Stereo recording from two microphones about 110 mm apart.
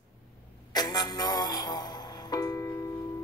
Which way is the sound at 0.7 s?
35° left (ahead or behind).